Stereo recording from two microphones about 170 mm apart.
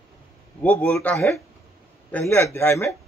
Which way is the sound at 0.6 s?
10° left (ahead or behind).